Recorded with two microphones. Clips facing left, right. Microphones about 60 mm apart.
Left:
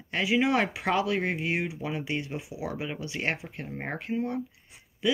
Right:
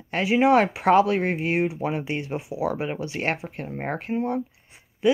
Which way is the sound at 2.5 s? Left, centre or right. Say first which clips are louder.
Right 8 dB; right.